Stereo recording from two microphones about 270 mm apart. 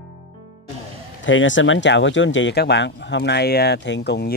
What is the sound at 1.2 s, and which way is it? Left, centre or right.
Speech, left.